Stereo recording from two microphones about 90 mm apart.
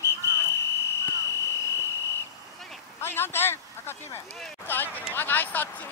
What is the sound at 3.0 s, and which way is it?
Speech, 25° left (ahead or behind).